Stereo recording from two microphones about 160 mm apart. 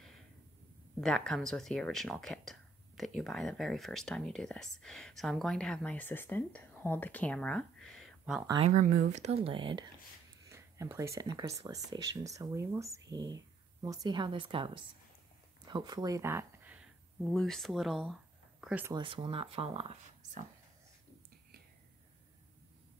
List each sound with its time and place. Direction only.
1.0 s speech: 5° left (ahead or behind)
8.6 s speech: 50° right (ahead or behind); by 9.8 s 30° right (ahead or behind)
10.5 s speech: 20° right (ahead or behind)
15.6 s a sound: 25° right (ahead or behind); by 17.3 s 10° right (ahead or behind)
17.3 s speech: 5° left (ahead or behind)
18.9 s speech: 35° right (ahead or behind)